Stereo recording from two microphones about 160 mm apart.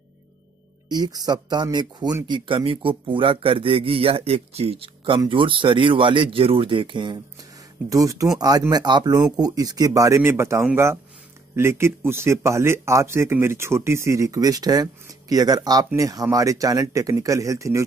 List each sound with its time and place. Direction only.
0.8 s speech: 25° right (ahead or behind)